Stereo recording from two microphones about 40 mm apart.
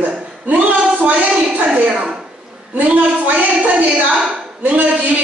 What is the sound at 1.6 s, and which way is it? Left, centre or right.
Speech, right.